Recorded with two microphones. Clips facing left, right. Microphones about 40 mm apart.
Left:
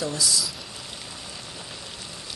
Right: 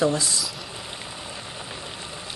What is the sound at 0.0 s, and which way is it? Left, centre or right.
Speech, right.